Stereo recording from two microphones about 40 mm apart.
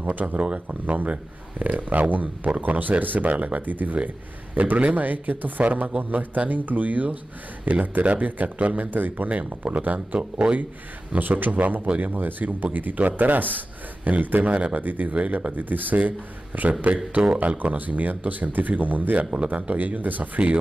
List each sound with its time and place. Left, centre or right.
0.0 s speech: right
8.9 s speech: right
9.3 s speech: right
11.1 s speech: right
14.5 s speech: right
14.8 s speech: right